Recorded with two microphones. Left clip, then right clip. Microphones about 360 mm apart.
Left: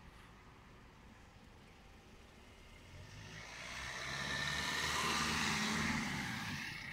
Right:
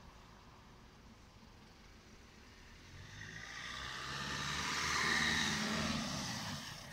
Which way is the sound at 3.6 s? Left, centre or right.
Centre.